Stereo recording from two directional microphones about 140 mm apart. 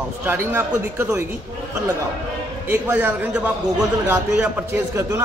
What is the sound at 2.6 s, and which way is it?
Speech, 15° right (ahead or behind).